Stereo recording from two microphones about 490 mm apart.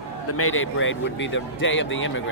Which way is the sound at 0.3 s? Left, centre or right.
Left.